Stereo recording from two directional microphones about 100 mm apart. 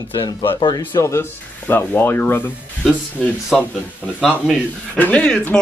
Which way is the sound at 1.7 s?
20° left (ahead or behind).